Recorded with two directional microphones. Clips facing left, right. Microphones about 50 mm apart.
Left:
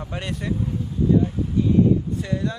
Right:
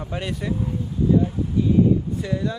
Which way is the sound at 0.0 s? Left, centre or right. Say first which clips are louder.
Right 1 dB; centre.